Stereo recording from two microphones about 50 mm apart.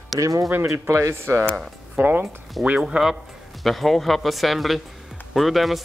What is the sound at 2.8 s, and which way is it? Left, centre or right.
Speech, centre.